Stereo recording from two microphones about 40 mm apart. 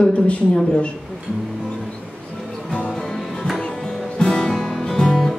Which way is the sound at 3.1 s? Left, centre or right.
Centre.